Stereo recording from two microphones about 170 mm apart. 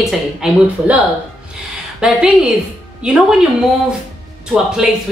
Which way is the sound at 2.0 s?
5° right (ahead or behind).